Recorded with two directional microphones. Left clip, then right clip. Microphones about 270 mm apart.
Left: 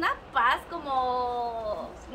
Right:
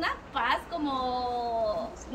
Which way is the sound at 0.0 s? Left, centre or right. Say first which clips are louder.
Left 5 dB; centre.